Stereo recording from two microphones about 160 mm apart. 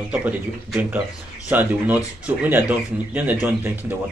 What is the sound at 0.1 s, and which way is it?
Speech, 5° right (ahead or behind).